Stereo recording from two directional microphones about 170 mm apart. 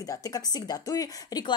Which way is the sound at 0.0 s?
20° left (ahead or behind).